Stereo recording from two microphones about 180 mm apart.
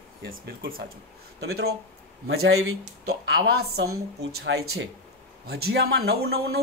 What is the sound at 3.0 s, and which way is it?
Speech, 75° right (ahead or behind).